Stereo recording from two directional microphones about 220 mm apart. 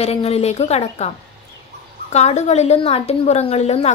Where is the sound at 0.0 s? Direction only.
30° left (ahead or behind).